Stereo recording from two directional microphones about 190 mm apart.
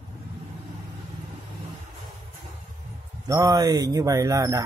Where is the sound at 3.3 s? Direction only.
20° right (ahead or behind).